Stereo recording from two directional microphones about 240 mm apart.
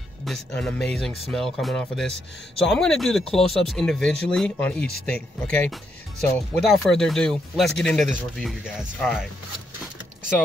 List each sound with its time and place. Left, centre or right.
0.2 s speech: centre